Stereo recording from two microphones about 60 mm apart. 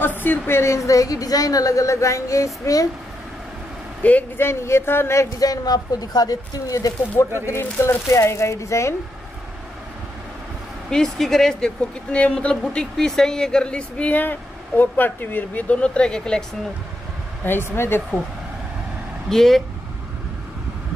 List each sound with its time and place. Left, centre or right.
0.0 s a woman's voice: left
4.0 s speech: left
4.4 s speech: left
5.4 s speech: left
7.4 s a woman's voice: left
10.9 s speech: centre
12.9 s speech: centre
17.5 s speech: left
19.2 s speech: centre